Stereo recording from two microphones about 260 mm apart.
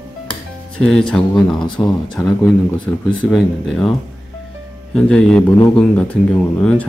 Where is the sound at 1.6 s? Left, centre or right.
Centre.